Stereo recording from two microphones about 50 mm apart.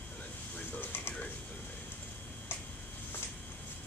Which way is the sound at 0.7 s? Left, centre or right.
Left.